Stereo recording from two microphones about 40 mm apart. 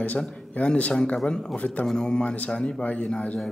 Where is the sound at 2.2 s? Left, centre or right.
Left.